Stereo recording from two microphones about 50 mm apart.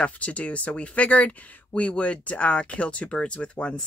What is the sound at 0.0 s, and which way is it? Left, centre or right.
Speech, left.